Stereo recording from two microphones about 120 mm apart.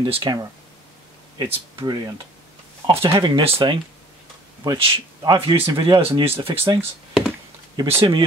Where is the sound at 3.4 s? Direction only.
50° right (ahead or behind).